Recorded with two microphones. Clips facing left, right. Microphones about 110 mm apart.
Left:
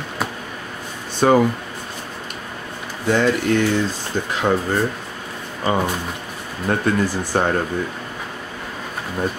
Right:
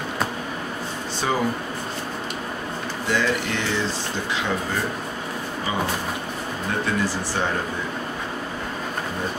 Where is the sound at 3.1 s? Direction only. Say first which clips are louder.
Left 7 dB; 50° left (ahead or behind).